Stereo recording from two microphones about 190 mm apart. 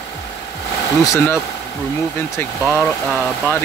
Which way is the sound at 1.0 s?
15° left (ahead or behind).